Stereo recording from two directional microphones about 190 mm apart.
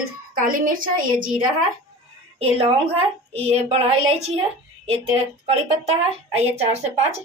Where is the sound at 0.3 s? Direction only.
45° right (ahead or behind).